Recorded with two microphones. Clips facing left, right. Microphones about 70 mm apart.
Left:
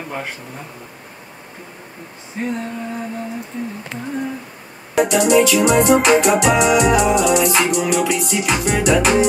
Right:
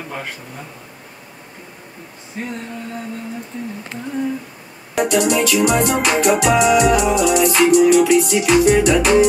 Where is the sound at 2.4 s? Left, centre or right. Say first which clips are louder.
Left 4 dB; centre.